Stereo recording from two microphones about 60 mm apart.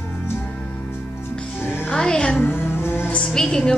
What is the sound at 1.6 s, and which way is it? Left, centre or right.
Music, left.